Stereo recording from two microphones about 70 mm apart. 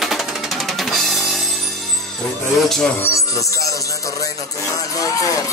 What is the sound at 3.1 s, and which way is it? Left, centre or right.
Music, left.